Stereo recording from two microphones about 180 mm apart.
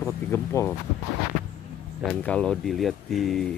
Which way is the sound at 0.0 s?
15° left (ahead or behind).